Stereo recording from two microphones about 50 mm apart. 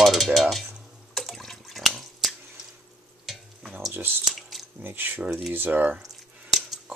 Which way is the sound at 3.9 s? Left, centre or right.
Right.